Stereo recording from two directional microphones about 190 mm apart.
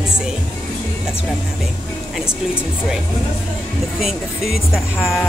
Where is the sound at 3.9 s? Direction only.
Centre (ahead or behind).